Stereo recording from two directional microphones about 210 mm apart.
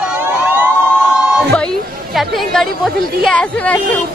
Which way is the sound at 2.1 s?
Centre (ahead or behind).